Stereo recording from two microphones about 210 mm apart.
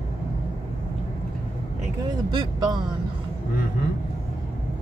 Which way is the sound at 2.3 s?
20° right (ahead or behind).